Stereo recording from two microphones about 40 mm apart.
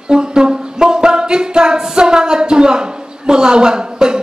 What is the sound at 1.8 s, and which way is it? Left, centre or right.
A woman's voice, centre.